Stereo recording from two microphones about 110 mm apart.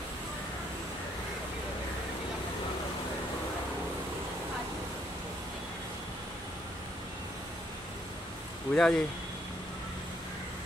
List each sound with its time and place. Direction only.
8.7 s speech: 5° left (ahead or behind)